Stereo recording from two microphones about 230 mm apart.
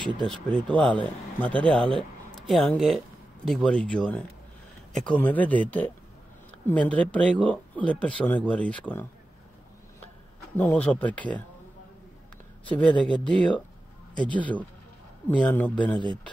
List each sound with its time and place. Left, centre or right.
0.2 s a man's voice: centre
10.5 s a man's voice: centre
12.7 s a man's voice: centre